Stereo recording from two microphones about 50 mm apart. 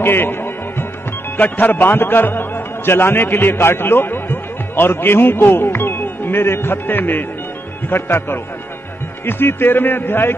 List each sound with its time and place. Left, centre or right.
0.0 s music: left
1.3 s a man's voice: left